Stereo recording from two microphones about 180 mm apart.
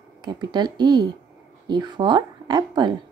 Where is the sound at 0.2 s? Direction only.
25° right (ahead or behind).